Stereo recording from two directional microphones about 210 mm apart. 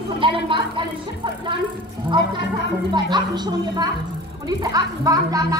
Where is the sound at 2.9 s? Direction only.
20° right (ahead or behind).